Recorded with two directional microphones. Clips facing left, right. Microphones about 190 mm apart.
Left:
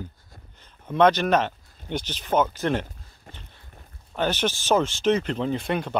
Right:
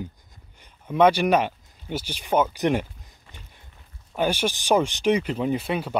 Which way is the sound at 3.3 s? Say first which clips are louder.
Left 4 dB; 45° left (ahead or behind).